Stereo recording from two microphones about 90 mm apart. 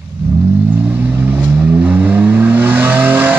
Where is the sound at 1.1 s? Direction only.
20° right (ahead or behind).